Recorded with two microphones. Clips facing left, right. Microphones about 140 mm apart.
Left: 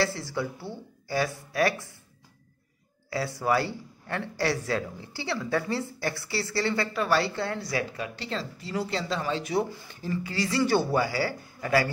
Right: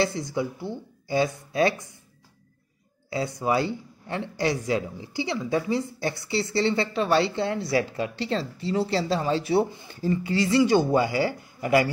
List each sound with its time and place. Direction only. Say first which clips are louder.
0.0 s a man's voice: right 3 dB; 20° right (ahead or behind)
3.1 s a man's voice: right 1 dB; 20° right (ahead or behind)